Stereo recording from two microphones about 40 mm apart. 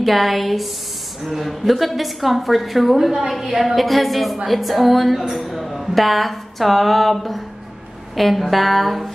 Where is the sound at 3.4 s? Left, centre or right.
Centre.